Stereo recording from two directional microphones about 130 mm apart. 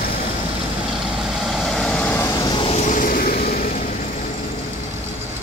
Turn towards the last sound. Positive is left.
turn(degrees=90)